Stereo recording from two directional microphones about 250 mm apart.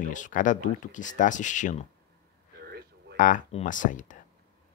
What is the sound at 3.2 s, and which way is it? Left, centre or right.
Speech, left.